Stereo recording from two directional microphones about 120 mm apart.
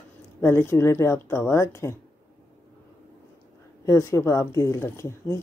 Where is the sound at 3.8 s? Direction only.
25° left (ahead or behind).